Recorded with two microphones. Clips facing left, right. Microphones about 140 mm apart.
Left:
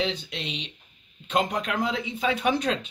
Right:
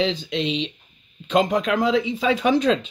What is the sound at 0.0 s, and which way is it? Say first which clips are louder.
Speech: right 7 dB; 90° right.